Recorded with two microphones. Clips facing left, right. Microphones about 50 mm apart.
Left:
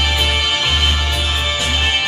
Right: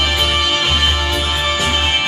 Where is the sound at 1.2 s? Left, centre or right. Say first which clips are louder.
Right 2 dB; centre.